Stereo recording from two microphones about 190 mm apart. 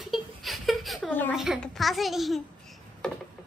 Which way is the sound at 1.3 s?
Centre (ahead or behind).